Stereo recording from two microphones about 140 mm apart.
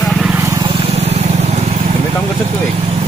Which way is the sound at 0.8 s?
50° right (ahead or behind).